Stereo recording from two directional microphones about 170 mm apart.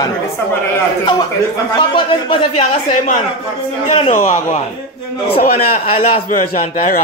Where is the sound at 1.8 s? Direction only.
30° left (ahead or behind).